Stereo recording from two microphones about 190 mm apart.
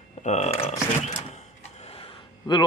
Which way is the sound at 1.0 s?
35° left (ahead or behind).